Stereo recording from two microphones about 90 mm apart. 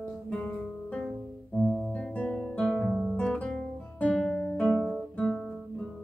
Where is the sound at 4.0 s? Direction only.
10° left (ahead or behind).